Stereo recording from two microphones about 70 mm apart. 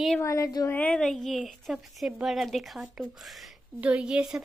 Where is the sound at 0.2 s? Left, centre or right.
Left.